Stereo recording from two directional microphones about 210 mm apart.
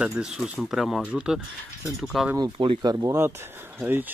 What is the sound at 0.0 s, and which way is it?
Speech, 5° right (ahead or behind).